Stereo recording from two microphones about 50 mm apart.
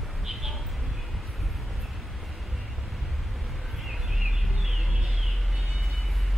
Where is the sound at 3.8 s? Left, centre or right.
Centre.